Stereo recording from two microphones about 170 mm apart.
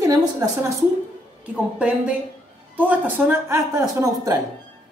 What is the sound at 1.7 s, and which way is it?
Speech, 5° right (ahead or behind).